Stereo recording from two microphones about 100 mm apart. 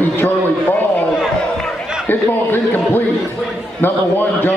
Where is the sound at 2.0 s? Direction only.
20° left (ahead or behind).